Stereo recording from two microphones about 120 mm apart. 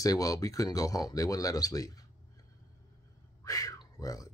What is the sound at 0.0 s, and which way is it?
Speech, 30° left (ahead or behind).